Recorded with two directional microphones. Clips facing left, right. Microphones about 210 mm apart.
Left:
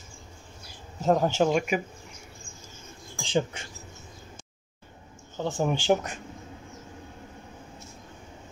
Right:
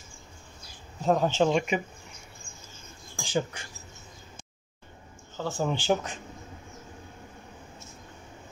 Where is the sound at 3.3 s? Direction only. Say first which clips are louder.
Left 3 dB; 25° left (ahead or behind).